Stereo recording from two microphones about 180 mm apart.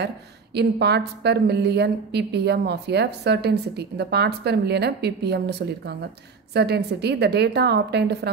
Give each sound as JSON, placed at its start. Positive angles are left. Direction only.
{"t": 0.6, "sound": "a woman's voice", "side_deg": -65}